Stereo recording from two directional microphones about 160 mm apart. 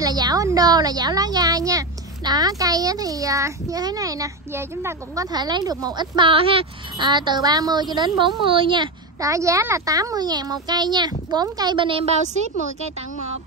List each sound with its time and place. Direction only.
0.0 s a woman's voice: 25° right (ahead or behind)